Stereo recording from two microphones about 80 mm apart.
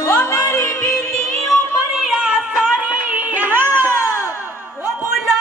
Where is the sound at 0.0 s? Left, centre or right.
Left.